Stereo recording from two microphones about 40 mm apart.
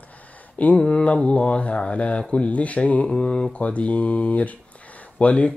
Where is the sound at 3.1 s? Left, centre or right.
Left.